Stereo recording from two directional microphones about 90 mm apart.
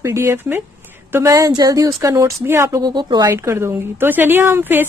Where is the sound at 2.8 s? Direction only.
50° right (ahead or behind).